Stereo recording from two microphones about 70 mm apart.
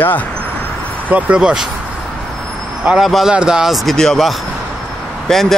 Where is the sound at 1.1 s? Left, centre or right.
Centre.